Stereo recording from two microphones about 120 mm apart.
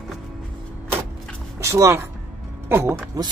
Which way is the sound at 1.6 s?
25° right (ahead or behind).